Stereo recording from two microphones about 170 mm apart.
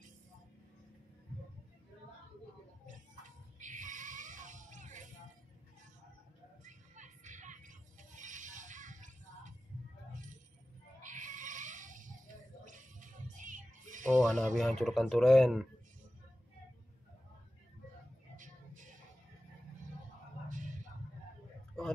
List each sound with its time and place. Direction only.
3.5 s music: 50° right (ahead or behind)
6.6 s music: 45° right (ahead or behind)
11.0 s cat: 50° right (ahead or behind)
12.6 s music: 50° right (ahead or behind)
14.2 s speech: 5° left (ahead or behind)
18.3 s music: 50° right (ahead or behind)
20.4 s music: 50° right (ahead or behind)